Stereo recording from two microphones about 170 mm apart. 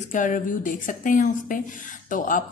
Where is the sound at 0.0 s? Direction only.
50° left (ahead or behind).